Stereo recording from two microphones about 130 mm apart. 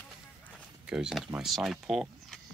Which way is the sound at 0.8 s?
5° right (ahead or behind).